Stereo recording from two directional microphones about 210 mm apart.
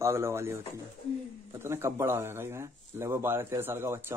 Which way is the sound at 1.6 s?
10° right (ahead or behind).